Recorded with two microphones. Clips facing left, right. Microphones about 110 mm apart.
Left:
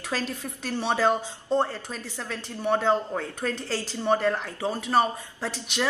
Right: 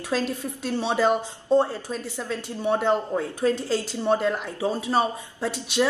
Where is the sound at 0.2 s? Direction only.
15° right (ahead or behind).